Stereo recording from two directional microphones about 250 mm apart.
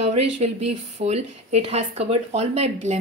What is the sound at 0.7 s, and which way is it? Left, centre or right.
Speech, right.